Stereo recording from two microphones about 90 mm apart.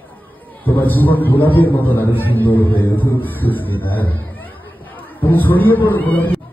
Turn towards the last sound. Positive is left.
turn(degrees=20)  # may be behind; listen again after turning